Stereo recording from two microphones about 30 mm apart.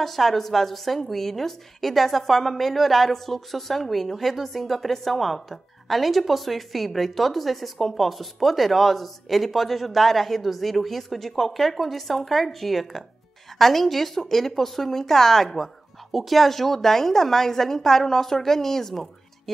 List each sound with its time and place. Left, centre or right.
0.0 s a woman's voice: centre
16.1 s a woman's voice: centre